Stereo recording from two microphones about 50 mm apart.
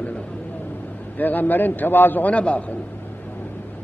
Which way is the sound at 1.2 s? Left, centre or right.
Left.